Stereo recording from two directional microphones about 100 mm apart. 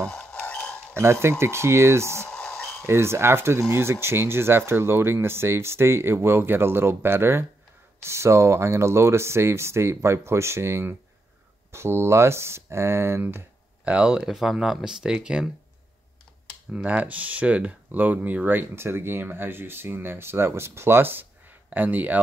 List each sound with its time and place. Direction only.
0.1 s a sound: 10° left (ahead or behind)
1.4 s speech: 25° right (ahead or behind)
2.2 s a sound: 10° left (ahead or behind)
2.9 s speech: 25° right (ahead or behind)
13.9 s speech: 10° right (ahead or behind)
16.7 s speech: 15° right (ahead or behind)